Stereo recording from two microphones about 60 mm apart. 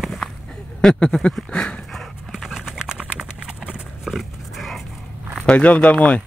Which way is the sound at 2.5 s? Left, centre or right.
Centre.